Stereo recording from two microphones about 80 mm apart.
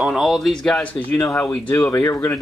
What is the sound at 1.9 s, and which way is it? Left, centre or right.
Speech, left.